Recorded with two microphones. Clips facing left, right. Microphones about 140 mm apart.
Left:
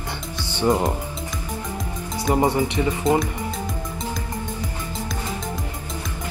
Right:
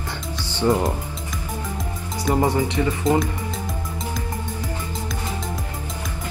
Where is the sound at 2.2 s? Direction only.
20° left (ahead or behind).